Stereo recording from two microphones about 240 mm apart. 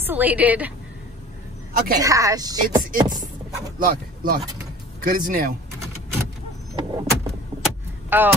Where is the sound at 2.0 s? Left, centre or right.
Centre.